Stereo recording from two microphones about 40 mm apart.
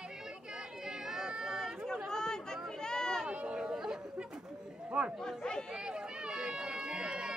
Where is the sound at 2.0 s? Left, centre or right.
Centre.